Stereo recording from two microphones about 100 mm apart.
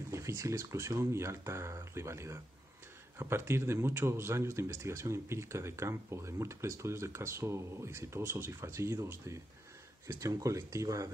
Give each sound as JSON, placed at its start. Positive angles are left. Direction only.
{"t": 0.1, "sound": "speech", "side_deg": -30}